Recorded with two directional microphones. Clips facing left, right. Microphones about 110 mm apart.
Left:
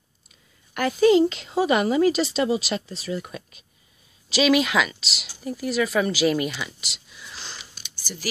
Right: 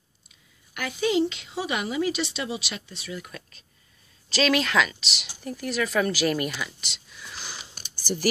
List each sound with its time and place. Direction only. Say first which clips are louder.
0.7 s speech: left 7 dB; 40° left (ahead or behind)
3.3 s speech: left 5 dB; 15° left (ahead or behind)
7.8 s a sound: right 1 dB; 50° right (ahead or behind)